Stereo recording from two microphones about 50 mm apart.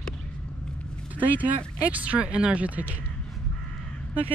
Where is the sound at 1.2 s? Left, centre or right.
Right.